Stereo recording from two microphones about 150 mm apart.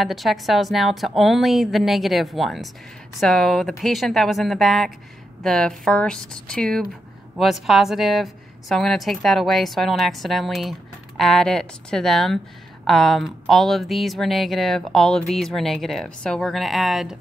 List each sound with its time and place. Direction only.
0.0 s a woman's voice: centre (ahead or behind)